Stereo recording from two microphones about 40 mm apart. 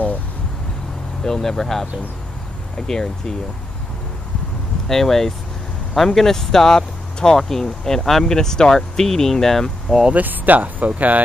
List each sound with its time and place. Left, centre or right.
1.2 s speech: centre
2.9 s speech: centre
4.8 s speech: centre
10.1 s speech: right